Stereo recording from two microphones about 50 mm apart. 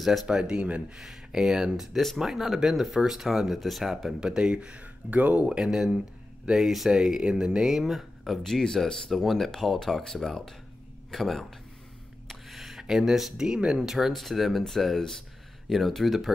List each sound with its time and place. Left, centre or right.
0.0 s speech: centre
0.3 s speech: centre
0.9 s speech: centre
1.8 s speech: centre
2.1 s speech: centre
4.2 s speech: centre
5.6 s speech: centre
6.5 s speech: centre
9.1 s speech: centre
12.3 s a sound: centre
13.7 s speech: centre